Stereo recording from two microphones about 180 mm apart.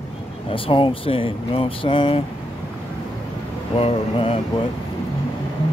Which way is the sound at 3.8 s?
30° left (ahead or behind).